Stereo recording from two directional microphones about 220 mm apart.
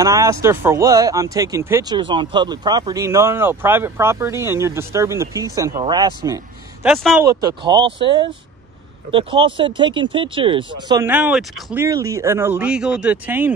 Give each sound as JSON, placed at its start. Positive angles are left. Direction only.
{"t": 0.0, "sound": "speech", "side_deg": -15}
{"t": 6.9, "sound": "speech", "side_deg": 0}
{"t": 7.2, "sound": "speech", "side_deg": -20}
{"t": 11.1, "sound": "speech", "side_deg": -5}